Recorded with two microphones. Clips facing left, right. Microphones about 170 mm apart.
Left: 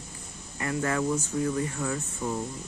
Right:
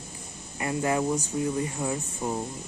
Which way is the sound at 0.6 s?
20° right (ahead or behind).